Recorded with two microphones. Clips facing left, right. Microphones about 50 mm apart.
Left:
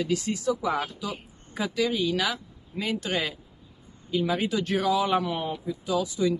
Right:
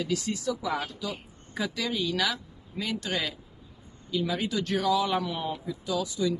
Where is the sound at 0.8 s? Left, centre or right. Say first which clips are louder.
Left 1 dB; centre.